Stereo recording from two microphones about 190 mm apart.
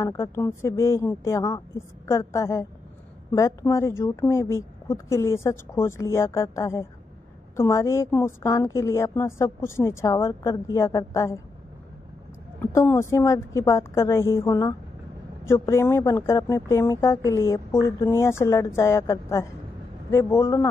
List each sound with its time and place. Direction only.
0.0 s a woman's voice: 15° left (ahead or behind)
12.7 s a woman's voice: 15° left (ahead or behind)